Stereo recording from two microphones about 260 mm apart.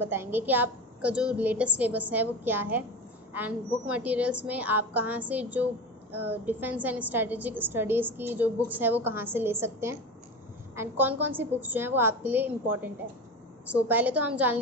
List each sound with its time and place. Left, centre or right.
0.0 s a woman's voice: centre